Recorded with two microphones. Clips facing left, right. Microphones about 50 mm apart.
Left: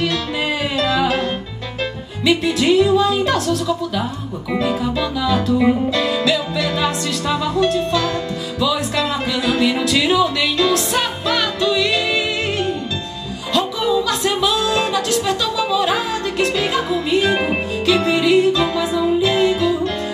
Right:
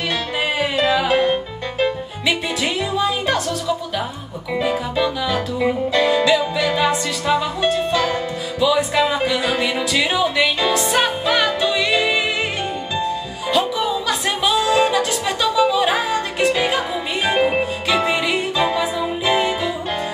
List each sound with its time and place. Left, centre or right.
0.6 s music: centre
13.5 s music: centre
17.4 s music: centre
17.8 s music: centre